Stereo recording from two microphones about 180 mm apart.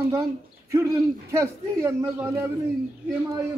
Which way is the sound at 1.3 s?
15° right (ahead or behind).